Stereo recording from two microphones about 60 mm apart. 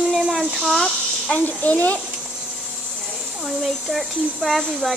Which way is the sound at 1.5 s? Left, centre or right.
Left.